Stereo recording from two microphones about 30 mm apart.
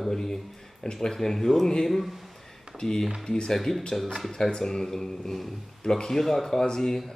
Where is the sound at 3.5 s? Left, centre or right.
Centre.